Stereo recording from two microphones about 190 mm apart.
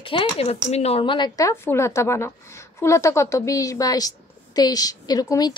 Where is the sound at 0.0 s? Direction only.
25° left (ahead or behind).